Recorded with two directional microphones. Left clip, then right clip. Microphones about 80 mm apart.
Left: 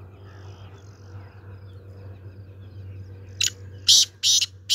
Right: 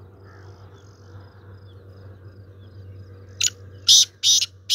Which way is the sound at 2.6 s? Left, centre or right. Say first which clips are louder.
Even; left.